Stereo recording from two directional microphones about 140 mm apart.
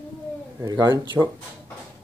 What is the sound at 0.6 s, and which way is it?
Speech, 30° right (ahead or behind).